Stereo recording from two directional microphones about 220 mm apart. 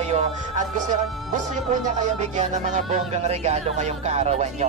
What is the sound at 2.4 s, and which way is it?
Speech, 30° right (ahead or behind).